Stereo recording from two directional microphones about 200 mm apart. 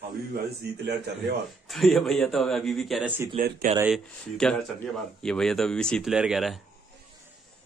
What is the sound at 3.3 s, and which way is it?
Speech, 45° right (ahead or behind).